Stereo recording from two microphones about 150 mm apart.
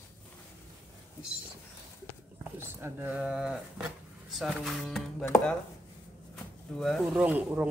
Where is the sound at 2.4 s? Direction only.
15° right (ahead or behind).